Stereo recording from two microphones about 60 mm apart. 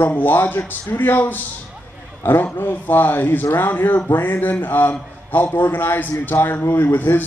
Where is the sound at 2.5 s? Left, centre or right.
Left.